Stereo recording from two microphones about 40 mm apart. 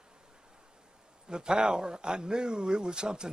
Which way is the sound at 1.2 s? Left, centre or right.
Centre.